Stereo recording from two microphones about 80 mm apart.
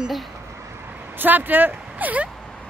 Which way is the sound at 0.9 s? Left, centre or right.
Right.